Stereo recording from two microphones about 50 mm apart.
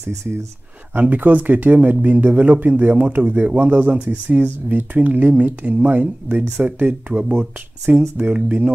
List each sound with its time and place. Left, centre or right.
0.9 s speech: right